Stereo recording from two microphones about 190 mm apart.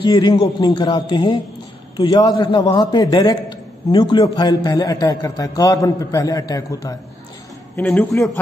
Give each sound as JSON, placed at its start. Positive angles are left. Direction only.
{"t": 0.0, "sound": "a man's voice", "side_deg": 20}